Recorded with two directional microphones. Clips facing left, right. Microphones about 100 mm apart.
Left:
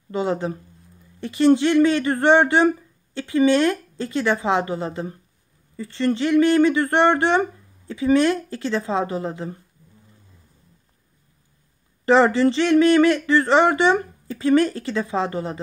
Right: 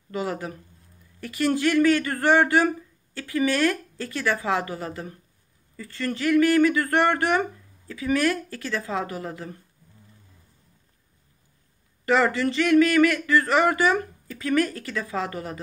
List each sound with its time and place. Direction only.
0.1 s speech: 25° left (ahead or behind)
12.1 s speech: 30° left (ahead or behind)